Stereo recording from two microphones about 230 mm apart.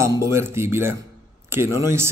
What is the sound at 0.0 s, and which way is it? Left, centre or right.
A man's voice, centre.